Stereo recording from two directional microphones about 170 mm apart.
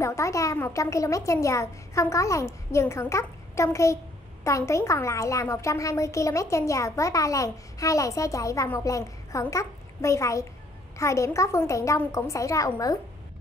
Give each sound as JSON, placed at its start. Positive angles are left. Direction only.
{"t": 0.0, "sound": "a woman's voice", "side_deg": 15}